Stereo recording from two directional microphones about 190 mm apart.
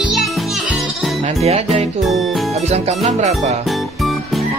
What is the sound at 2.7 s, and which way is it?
Music, 35° right (ahead or behind).